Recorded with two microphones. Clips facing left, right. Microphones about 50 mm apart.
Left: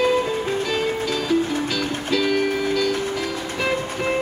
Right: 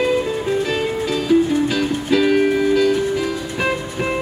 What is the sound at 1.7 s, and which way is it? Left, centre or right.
Music, centre.